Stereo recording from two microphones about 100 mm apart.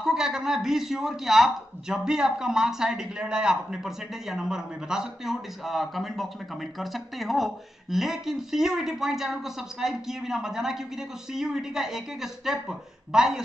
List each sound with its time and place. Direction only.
0.0 s speech: 5° right (ahead or behind)